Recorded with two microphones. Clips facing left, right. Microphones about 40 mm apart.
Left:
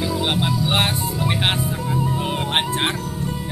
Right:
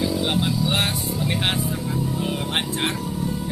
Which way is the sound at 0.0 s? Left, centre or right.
Left.